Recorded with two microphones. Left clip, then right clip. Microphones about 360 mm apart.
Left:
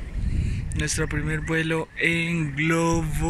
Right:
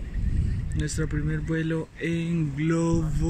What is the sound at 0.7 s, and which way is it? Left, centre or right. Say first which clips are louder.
Speech: left 5 dB; centre.